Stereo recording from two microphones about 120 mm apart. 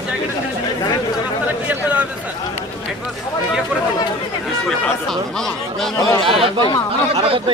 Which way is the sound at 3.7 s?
10° right (ahead or behind).